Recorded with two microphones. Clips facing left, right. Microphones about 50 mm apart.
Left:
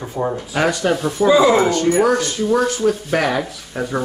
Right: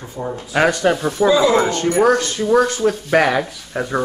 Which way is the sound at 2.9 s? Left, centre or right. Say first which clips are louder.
Right 2 dB; right.